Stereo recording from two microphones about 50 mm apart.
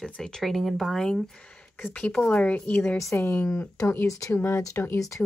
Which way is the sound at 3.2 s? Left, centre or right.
Left.